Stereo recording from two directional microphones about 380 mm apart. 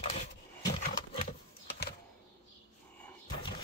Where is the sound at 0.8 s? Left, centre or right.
Left.